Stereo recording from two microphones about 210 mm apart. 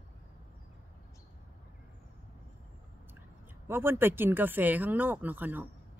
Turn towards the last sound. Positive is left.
turn(degrees=-10)  # may be behind; listen again after turning